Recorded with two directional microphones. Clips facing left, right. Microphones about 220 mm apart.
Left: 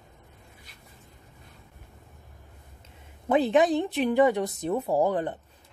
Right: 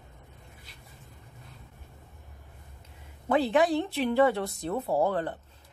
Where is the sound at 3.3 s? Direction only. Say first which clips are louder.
Left 2 dB; 20° left (ahead or behind).